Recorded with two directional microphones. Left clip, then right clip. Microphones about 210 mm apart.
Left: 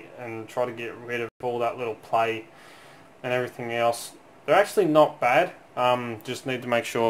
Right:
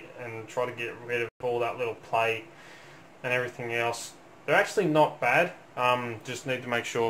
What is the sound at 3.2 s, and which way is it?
Speech, 45° left (ahead or behind).